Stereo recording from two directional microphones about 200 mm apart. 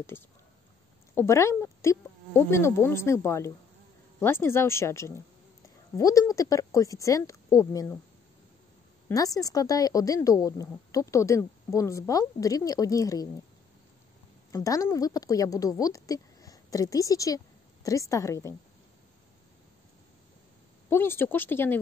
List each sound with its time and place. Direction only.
0.1 s a woman's voice: 10° left (ahead or behind)
9.1 s a woman's voice: 15° left (ahead or behind)
14.5 s a woman's voice: 15° left (ahead or behind)
20.9 s a woman's voice: 10° left (ahead or behind)